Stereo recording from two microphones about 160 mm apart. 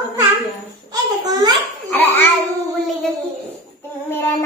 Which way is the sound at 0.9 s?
25° right (ahead or behind).